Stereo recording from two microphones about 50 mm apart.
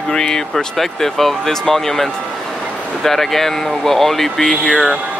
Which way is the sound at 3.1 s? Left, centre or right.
Centre.